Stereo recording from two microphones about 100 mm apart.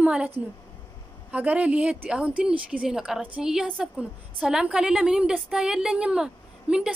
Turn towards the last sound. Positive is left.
turn(degrees=-10)  # may be behind; listen again after turning